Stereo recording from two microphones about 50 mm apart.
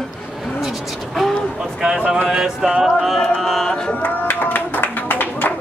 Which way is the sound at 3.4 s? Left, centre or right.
Centre.